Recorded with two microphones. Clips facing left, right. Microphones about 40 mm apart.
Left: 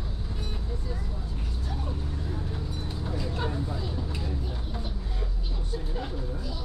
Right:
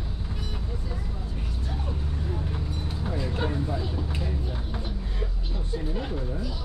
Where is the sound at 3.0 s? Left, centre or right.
Centre.